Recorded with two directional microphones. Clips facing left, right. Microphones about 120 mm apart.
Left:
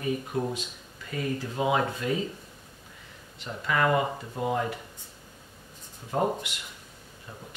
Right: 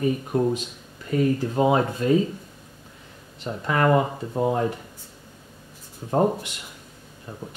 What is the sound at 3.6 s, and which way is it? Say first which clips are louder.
Speech: right 4 dB; 40° right (ahead or behind).